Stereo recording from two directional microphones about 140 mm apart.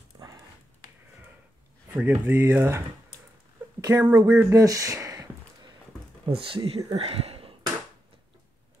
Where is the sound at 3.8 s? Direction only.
25° right (ahead or behind).